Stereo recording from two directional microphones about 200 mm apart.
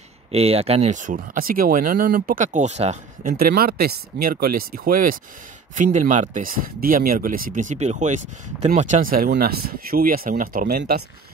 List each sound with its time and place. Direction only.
0.3 s speech: 30° right (ahead or behind)
3.3 s speech: 50° right (ahead or behind)